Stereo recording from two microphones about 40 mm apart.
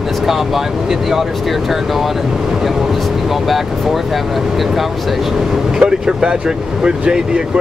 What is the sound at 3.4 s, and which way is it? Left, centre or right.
Speech, centre.